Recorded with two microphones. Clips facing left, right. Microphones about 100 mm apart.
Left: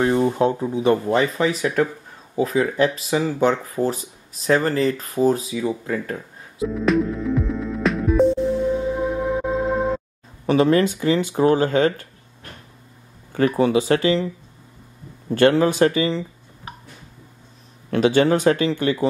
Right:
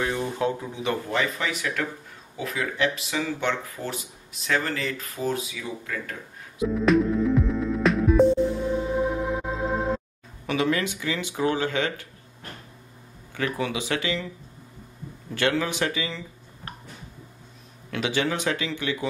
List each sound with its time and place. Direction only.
0.0 s speech: 30° left (ahead or behind)
6.6 s music: centre (ahead or behind)
10.4 s speech: 35° left (ahead or behind)
13.6 s speech: 40° left (ahead or behind)
15.3 s speech: 40° left (ahead or behind)
17.9 s speech: 40° left (ahead or behind)